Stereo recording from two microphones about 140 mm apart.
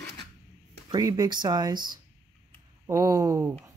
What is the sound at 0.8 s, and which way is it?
Speech, 25° right (ahead or behind).